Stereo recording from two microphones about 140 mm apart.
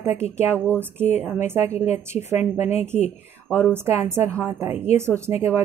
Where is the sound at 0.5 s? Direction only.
10° left (ahead or behind).